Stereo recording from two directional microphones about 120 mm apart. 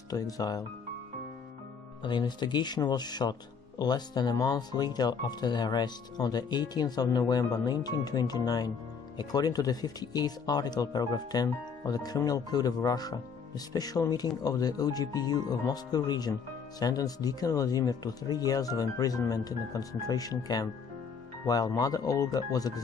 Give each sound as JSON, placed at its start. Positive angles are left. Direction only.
{"t": 0.1, "sound": "speech", "side_deg": 30}
{"t": 2.0, "sound": "speech", "side_deg": 40}